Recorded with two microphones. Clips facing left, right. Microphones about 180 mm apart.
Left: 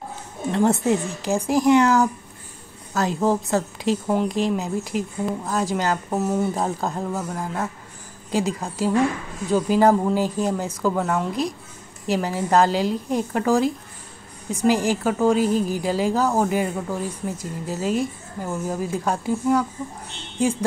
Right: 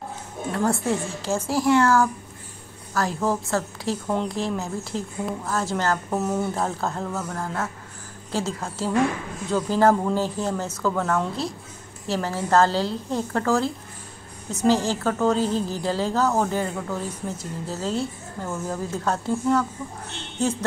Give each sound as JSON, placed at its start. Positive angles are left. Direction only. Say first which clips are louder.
{"t": 0.5, "sound": "a woman's voice", "louder": "left 4 dB", "side_deg": 20}
{"t": 6.5, "sound": "a woman's voice", "louder": "left 2 dB", "side_deg": 15}